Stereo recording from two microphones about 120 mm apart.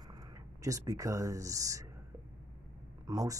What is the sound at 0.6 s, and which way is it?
Speech, 30° right (ahead or behind).